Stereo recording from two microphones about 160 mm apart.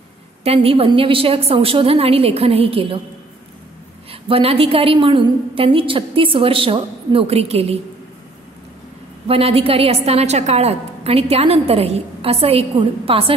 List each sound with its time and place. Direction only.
0.4 s a woman's voice: 40° right (ahead or behind)
4.1 s a woman's voice: 35° right (ahead or behind)
9.3 s a woman's voice: 40° right (ahead or behind)